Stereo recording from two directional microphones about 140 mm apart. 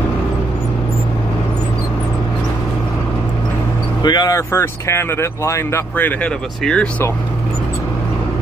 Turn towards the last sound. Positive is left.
turn(degrees=5)  # may be behind; listen again after turning